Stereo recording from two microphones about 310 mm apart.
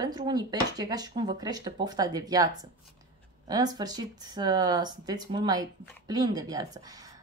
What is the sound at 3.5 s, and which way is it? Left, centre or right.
Speech, centre.